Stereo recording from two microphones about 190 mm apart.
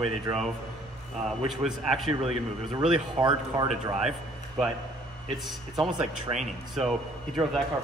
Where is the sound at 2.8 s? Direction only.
25° right (ahead or behind).